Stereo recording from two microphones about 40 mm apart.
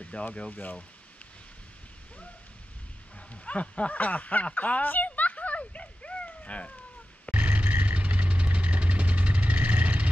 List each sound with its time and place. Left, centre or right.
0.0 s speech: left
0.5 s speech: left
3.2 s speech: left
4.6 s a sound: left
7.2 s vehicle: right